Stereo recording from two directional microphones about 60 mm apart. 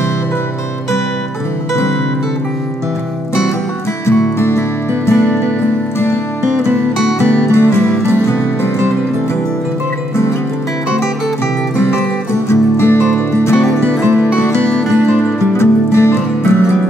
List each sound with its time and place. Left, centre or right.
4.0 s music: left
7.5 s music: left
11.7 s music: left
15.2 s music: left